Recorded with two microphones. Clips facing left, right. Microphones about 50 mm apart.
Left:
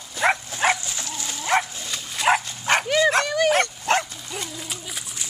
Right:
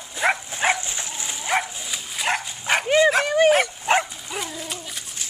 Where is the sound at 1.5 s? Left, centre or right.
Centre.